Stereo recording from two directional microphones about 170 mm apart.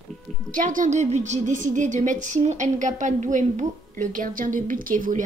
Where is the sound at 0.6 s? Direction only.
50° right (ahead or behind).